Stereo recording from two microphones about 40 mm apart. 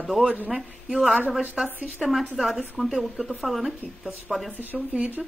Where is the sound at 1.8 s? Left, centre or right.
Centre.